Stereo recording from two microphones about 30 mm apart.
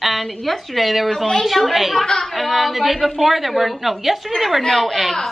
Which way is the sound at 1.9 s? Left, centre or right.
Centre.